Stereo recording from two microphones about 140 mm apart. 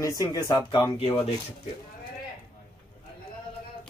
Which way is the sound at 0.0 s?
20° left (ahead or behind).